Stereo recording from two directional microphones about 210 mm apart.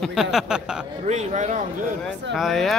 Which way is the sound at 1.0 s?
35° right (ahead or behind).